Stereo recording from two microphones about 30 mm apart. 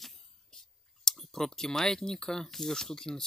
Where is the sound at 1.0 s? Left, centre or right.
Centre.